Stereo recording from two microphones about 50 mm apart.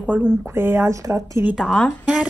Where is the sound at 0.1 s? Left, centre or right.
Right.